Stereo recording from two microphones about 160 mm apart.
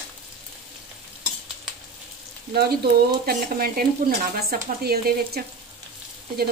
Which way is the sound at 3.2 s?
70° right (ahead or behind).